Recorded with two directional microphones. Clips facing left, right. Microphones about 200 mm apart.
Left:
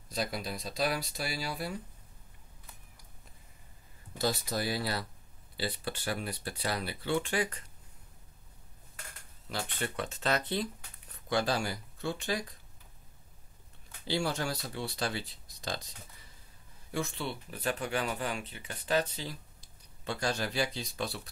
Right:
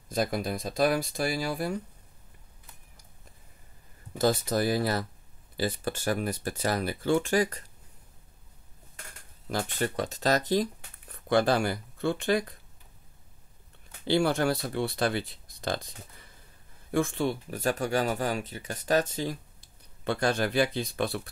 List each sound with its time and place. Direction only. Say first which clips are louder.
0.1 s speech: right 7 dB; 50° right (ahead or behind)
4.2 s speech: right 7 dB; 50° right (ahead or behind)
9.5 s speech: right 7 dB; 45° right (ahead or behind)
14.0 s speech: right 8 dB; 55° right (ahead or behind)